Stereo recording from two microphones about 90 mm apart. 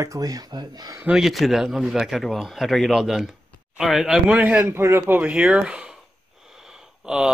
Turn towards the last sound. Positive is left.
turn(degrees=-10)  # may be behind; listen again after turning